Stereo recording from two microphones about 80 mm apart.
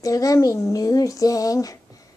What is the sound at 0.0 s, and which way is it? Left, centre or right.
A woman's voice, left.